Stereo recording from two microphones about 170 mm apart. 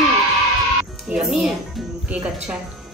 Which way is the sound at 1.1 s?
5° right (ahead or behind).